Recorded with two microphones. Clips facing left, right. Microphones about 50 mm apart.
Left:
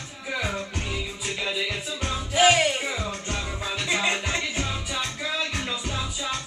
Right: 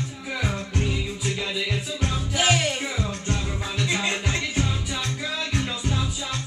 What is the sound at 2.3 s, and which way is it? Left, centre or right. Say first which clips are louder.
Music: left 4 dB; centre.